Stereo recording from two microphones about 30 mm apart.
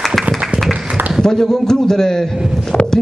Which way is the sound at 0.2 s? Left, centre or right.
Centre.